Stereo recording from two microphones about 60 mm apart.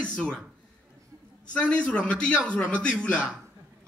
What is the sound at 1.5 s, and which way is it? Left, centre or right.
Speech, centre.